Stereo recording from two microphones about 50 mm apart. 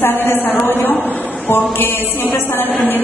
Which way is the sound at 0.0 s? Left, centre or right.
Left.